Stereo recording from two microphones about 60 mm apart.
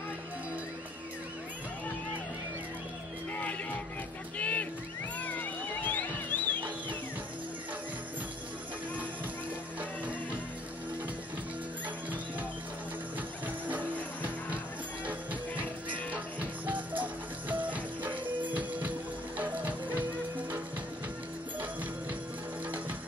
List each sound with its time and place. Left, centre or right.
4.4 s music: left
13.7 s music: right
16.1 s music: right